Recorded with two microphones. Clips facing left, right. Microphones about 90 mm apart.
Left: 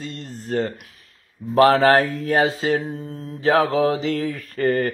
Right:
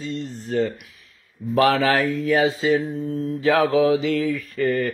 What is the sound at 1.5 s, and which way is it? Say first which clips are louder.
Speech: left 4 dB; 40° left (ahead or behind).